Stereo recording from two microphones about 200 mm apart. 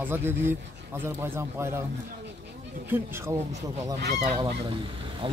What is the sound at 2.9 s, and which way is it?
Speech, 10° right (ahead or behind).